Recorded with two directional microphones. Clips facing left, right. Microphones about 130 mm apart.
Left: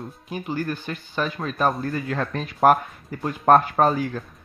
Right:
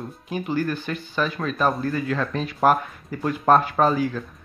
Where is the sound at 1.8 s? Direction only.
30° left (ahead or behind).